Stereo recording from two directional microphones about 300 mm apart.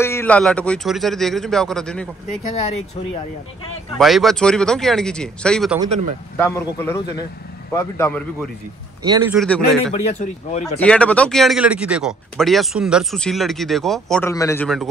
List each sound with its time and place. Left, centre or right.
0.0 s speech: centre
4.0 s speech: centre
5.8 s speech: right
6.3 s a man's voice: centre
10.1 s speech: left
10.8 s a man's voice: centre